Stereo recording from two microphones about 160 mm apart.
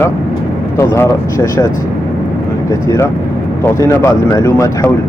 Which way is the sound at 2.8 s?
20° left (ahead or behind).